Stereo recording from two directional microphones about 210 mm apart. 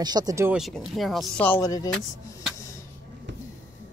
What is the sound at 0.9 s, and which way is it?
Speech, centre (ahead or behind).